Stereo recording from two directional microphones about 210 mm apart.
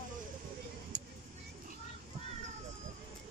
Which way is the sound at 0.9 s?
40° left (ahead or behind).